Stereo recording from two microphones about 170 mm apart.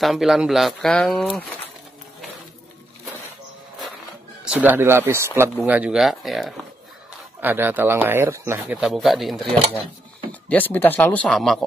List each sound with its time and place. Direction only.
0.0 s speech: centre (ahead or behind)
4.5 s speech: 10° right (ahead or behind)
7.3 s speech: 10° right (ahead or behind)
8.7 s speech: centre (ahead or behind)
10.5 s speech: 10° left (ahead or behind)